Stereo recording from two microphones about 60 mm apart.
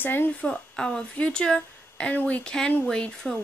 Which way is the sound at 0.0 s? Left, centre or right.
Left.